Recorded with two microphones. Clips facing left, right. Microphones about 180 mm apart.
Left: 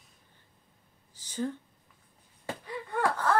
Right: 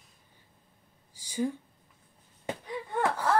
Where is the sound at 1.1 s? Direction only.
10° right (ahead or behind).